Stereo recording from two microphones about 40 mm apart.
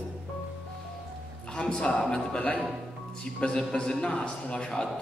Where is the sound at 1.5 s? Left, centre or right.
Left.